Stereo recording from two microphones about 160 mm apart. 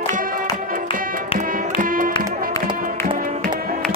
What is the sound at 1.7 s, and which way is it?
Music, 60° right (ahead or behind).